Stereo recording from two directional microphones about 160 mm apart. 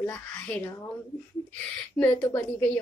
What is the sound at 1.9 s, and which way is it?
Speech, 15° left (ahead or behind).